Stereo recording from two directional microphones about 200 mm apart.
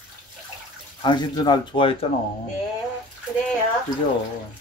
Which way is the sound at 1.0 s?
20° left (ahead or behind).